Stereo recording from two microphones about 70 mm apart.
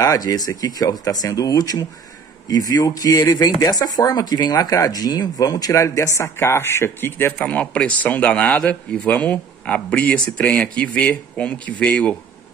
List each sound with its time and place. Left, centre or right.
0.0 s speech: left
7.4 s speech: centre